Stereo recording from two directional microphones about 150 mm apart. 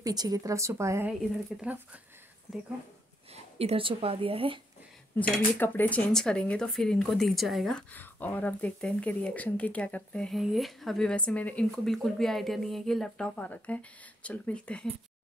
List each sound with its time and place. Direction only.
0.0 s a woman's voice: 25° right (ahead or behind); by 2.0 s 10° right (ahead or behind)
3.5 s a woman's voice: 40° right (ahead or behind)
5.2 s speech: 10° left (ahead or behind)